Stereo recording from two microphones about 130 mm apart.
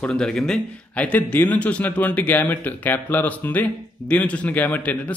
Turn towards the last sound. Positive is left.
turn(degrees=10)  # may be behind; listen again after turning